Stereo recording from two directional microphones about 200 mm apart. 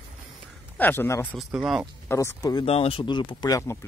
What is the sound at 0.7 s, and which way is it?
Speech, 10° left (ahead or behind).